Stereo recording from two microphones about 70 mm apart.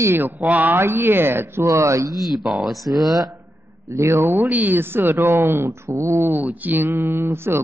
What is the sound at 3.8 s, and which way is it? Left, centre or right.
Speech, right.